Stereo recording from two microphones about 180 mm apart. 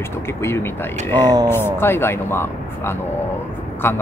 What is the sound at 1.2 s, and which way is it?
Speech, 20° right (ahead or behind).